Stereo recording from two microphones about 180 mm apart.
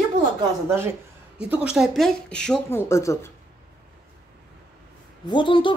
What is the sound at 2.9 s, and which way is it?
Speech, 15° left (ahead or behind).